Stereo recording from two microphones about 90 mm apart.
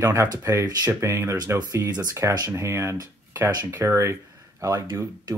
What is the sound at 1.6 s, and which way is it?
Speech, 45° right (ahead or behind).